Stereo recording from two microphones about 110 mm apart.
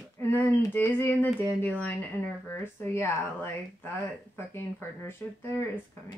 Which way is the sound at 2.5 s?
20° left (ahead or behind).